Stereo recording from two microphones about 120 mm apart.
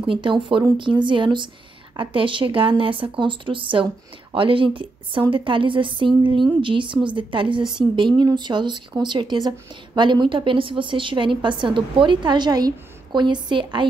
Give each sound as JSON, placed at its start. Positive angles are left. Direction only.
{"t": 0.0, "sound": "a woman's voice", "side_deg": -45}